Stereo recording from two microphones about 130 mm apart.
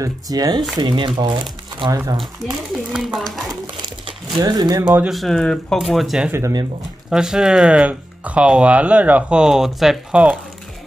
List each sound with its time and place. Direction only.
0.0 s speech: 30° right (ahead or behind)
2.9 s speech: 5° right (ahead or behind)
4.4 s speech: 30° right (ahead or behind)
4.8 s speech: 10° right (ahead or behind)
5.1 s speech: centre (ahead or behind)
6.3 s speech: 25° right (ahead or behind)
7.1 s speech: 5° right (ahead or behind)